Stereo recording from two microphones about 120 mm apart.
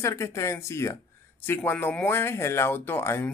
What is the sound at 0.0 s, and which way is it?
Speech, 25° left (ahead or behind).